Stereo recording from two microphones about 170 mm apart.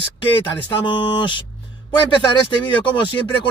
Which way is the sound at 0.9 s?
30° left (ahead or behind).